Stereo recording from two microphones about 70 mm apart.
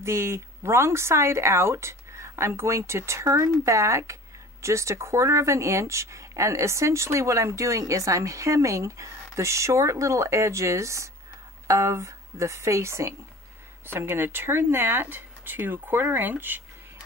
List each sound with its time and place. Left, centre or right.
0.0 s speech: right
13.8 s speech: right